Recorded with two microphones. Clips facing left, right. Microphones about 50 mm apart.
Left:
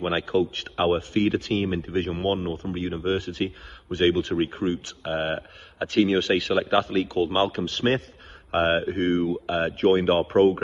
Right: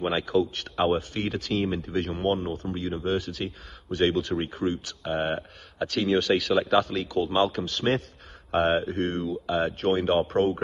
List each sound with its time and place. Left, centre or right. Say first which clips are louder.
0.1 s speech: left 1 dB; left